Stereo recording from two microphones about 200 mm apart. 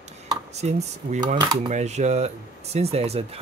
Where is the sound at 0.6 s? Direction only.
35° right (ahead or behind).